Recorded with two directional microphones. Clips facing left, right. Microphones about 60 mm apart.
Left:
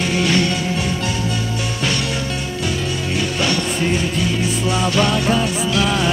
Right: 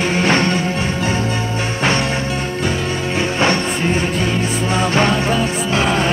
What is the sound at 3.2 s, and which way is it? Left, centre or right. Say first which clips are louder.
Music: right 4 dB; right.